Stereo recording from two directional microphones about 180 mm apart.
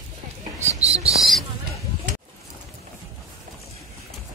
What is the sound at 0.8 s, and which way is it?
Owl, 35° right (ahead or behind).